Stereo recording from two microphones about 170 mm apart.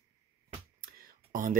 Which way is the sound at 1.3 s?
55° right (ahead or behind).